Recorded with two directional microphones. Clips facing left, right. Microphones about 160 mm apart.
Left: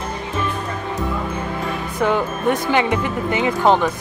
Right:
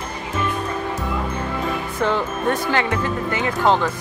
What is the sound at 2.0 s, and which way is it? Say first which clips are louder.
Speech: left 3 dB; 10° left (ahead or behind).